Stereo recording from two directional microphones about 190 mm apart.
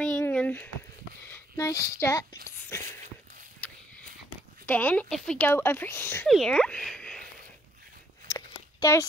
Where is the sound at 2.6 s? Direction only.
15° left (ahead or behind).